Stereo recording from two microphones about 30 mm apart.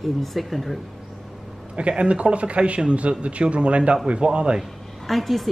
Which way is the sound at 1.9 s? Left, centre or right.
Right.